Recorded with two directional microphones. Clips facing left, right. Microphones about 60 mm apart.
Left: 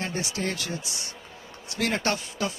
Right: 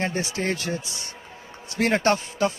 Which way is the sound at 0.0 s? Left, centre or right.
Right.